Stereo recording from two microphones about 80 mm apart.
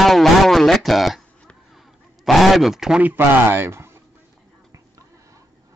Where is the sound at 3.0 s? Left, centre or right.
Right.